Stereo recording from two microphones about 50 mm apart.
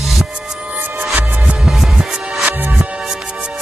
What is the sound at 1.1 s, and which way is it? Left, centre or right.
Music, right.